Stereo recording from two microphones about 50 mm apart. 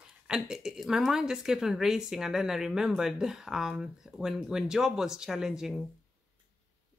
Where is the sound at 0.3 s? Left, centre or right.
Centre.